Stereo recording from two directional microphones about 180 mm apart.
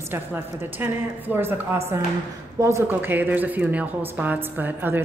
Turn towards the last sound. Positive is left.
turn(degrees=-10)  # may be behind; listen again after turning